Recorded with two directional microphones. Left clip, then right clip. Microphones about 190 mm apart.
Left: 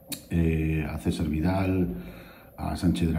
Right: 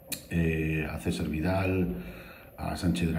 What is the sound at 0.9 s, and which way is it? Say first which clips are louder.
Speech: left 3 dB; 30° left (ahead or behind).